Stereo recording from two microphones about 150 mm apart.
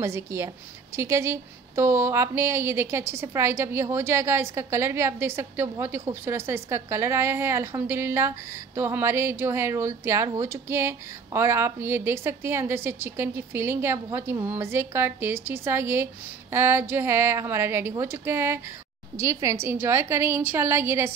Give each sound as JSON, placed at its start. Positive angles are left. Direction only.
{"t": 0.0, "sound": "a woman's voice", "side_deg": -20}